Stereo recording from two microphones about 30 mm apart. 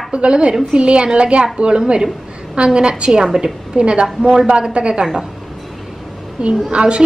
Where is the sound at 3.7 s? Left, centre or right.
Right.